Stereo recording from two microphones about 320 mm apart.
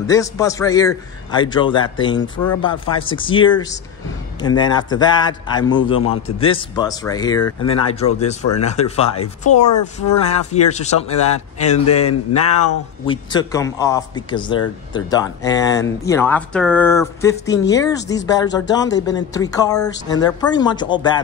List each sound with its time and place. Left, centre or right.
0.0 s a man's voice: centre
12.1 s speech: left
13.0 s a man's voice: centre